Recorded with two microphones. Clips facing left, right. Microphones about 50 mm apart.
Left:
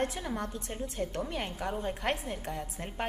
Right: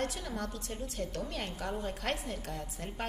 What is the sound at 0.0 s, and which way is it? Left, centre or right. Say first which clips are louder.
A woman's voice: left 3 dB; left.